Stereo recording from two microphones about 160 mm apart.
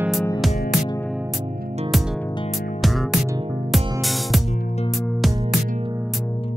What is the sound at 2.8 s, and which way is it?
Music, centre (ahead or behind).